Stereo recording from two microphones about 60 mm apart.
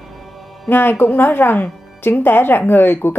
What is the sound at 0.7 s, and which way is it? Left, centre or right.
Speech, left.